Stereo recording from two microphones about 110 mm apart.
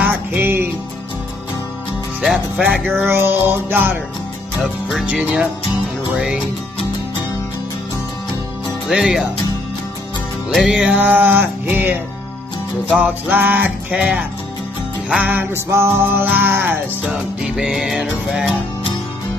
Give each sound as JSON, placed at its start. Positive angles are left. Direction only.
{"t": 0.0, "sound": "music", "side_deg": -15}
{"t": 2.2, "sound": "music", "side_deg": -10}
{"t": 3.1, "sound": "music", "side_deg": -20}
{"t": 5.0, "sound": "music", "side_deg": -10}
{"t": 8.8, "sound": "music", "side_deg": -5}
{"t": 10.5, "sound": "music", "side_deg": 0}
{"t": 10.8, "sound": "music", "side_deg": -15}
{"t": 17.1, "sound": "music", "side_deg": -5}